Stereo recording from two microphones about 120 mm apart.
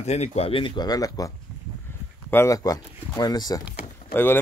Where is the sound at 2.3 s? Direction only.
25° left (ahead or behind).